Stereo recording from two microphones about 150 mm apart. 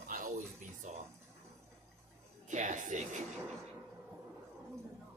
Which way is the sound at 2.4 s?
55° right (ahead or behind).